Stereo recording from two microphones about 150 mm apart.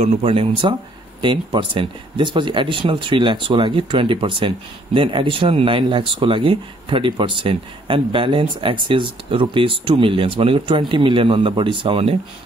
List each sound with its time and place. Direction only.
0.0 s speech: 45° right (ahead or behind)